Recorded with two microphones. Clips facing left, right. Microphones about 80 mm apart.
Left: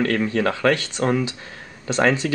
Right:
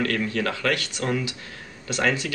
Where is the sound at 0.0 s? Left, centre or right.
Left.